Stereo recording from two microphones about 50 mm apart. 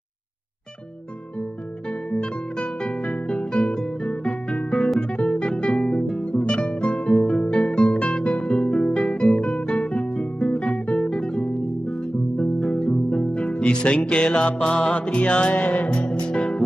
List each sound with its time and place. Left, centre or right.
2.0 s music: centre
4.3 s guitar: left
5.1 s music: centre
9.4 s guitar: left
9.7 s music: left
15.5 s music: left
15.9 s music: centre